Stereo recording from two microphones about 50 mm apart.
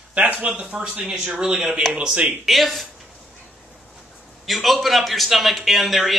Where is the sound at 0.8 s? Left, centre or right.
Centre.